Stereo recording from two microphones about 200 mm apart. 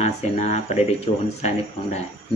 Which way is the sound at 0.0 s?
35° left (ahead or behind).